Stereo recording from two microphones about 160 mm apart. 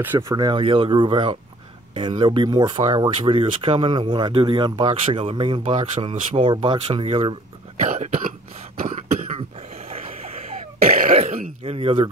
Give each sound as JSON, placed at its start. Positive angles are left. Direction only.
{"t": 0.0, "sound": "speech", "side_deg": -15}
{"t": 5.6, "sound": "speech", "side_deg": -45}
{"t": 7.8, "sound": "cough", "side_deg": -45}
{"t": 9.8, "sound": "throat clearing", "side_deg": -40}
{"t": 11.6, "sound": "speech", "side_deg": -35}